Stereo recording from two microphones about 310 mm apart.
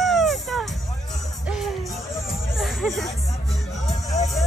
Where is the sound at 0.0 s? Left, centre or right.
Centre.